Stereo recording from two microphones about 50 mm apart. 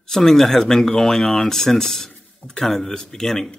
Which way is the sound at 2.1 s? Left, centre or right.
Left.